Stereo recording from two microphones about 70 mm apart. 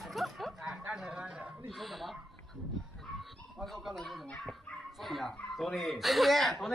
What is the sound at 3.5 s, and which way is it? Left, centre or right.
Speech, centre.